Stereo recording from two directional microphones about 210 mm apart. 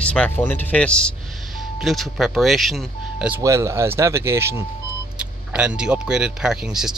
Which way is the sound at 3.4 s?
15° right (ahead or behind).